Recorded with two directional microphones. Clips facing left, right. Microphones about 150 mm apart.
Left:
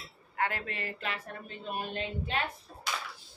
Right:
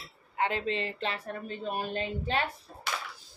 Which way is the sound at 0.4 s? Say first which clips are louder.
Right 4 dB; 20° right (ahead or behind).